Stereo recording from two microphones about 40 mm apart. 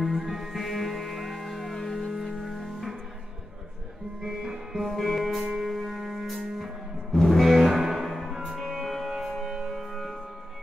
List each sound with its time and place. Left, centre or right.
0.0 s music: centre
4.2 s music: centre
4.7 s music: centre
9.5 s music: centre
9.8 s music: centre